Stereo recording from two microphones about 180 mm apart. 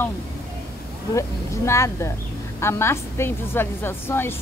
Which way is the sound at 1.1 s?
15° left (ahead or behind).